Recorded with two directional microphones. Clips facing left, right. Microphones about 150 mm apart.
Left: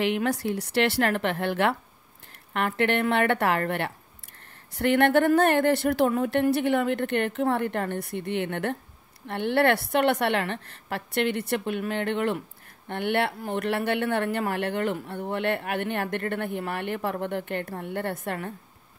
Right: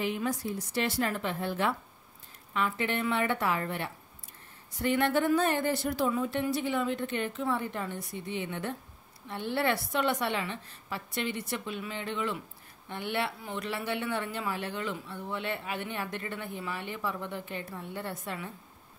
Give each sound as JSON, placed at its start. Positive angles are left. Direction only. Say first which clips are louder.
{"t": 0.0, "sound": "speech", "louder": "left 6 dB", "side_deg": 75}